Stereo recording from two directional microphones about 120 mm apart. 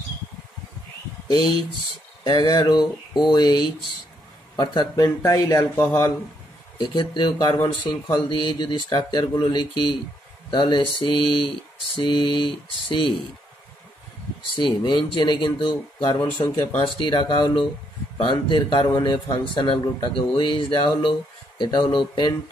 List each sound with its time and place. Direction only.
1.2 s a man's voice: 35° left (ahead or behind)
6.8 s a man's voice: 40° left (ahead or behind)
14.6 s a man's voice: 40° left (ahead or behind)